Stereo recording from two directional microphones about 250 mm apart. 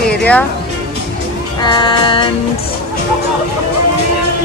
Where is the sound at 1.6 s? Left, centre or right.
Centre.